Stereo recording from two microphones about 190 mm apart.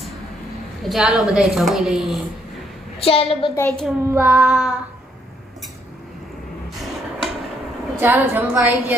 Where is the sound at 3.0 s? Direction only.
30° left (ahead or behind).